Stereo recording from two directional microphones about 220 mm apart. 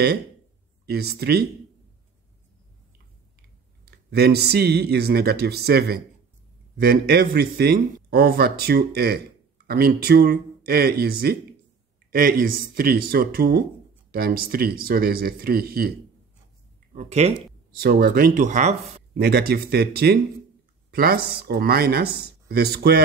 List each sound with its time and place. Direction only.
0.8 s speech: 45° right (ahead or behind)
3.8 s speech: 45° right (ahead or behind)
16.9 s speech: 30° right (ahead or behind)
17.7 s speech: 45° right (ahead or behind)
19.2 s speech: 45° right (ahead or behind)